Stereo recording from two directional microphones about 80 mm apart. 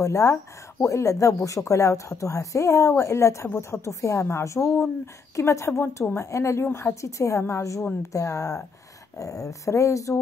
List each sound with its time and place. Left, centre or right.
0.0 s speech: left